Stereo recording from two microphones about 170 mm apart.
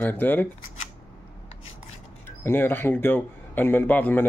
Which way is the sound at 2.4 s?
15° left (ahead or behind).